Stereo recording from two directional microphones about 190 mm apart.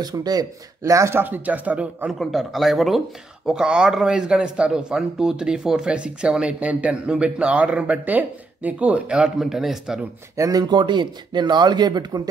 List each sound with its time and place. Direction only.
0.0 s speech: 20° right (ahead or behind); by 10.0 s 5° right (ahead or behind)
10.3 s speech: 20° right (ahead or behind)